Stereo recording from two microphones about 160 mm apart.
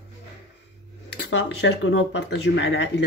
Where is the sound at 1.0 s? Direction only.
90° left.